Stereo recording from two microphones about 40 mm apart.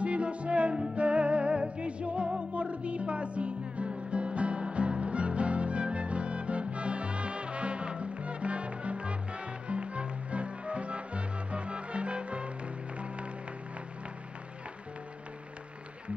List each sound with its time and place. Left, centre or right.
0.0 s music: right